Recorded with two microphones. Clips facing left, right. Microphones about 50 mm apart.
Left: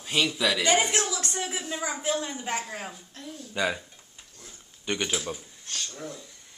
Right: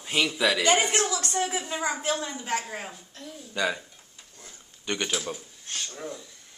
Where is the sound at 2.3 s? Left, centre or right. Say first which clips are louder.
Right 1 dB; centre.